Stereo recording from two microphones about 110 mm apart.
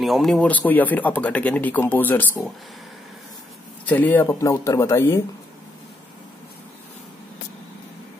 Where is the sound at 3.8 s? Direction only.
15° left (ahead or behind).